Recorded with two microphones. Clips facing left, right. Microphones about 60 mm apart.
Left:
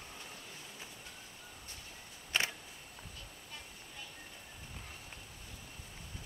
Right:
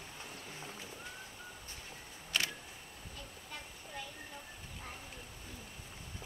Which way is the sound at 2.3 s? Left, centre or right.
Left.